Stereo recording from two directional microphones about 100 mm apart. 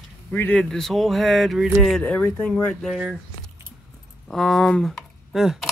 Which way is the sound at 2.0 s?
15° left (ahead or behind).